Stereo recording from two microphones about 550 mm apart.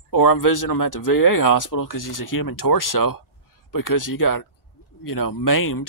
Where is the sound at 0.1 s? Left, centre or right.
Left.